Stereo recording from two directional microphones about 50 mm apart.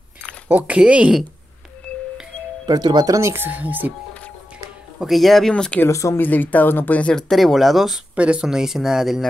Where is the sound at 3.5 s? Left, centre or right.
Right.